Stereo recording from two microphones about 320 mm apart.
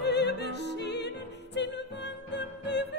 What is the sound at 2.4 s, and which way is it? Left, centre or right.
Music, left.